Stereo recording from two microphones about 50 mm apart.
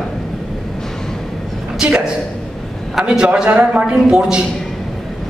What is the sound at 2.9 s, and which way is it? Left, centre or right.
A man's voice, centre.